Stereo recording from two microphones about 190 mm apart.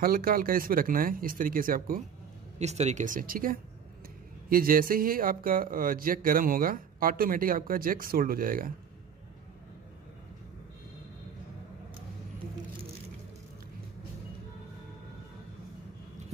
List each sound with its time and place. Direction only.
0.0 s speech: 50° right (ahead or behind)
2.6 s speech: 35° right (ahead or behind)